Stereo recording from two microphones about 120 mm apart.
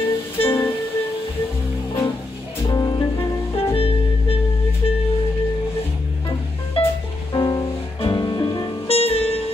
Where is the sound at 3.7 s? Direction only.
50° left (ahead or behind).